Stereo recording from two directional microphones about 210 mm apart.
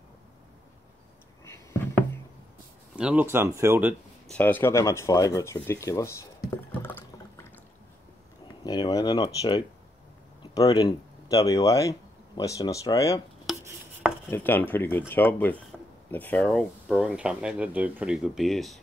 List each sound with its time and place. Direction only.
1.4 s a sound: 15° left (ahead or behind)
3.0 s speech: 5° right (ahead or behind)
4.3 s speech: 10° left (ahead or behind)
6.7 s liquid: 10° left (ahead or behind)
8.6 s speech: 20° left (ahead or behind)
13.5 s chopping: centre (ahead or behind)
14.3 s speech: 10° left (ahead or behind)
15.7 s a sound: centre (ahead or behind)
16.1 s speech: 10° left (ahead or behind)